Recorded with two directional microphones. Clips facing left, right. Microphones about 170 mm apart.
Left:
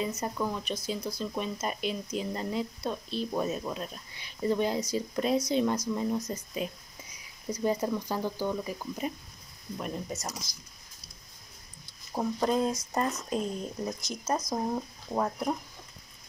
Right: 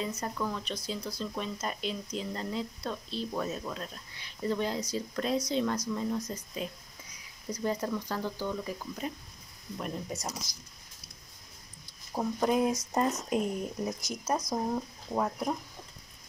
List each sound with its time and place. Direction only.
0.1 s speech: 20° left (ahead or behind); by 10.3 s centre (ahead or behind)
12.1 s speech: centre (ahead or behind)
12.9 s speech: 15° right (ahead or behind)
14.5 s speech: 5° left (ahead or behind)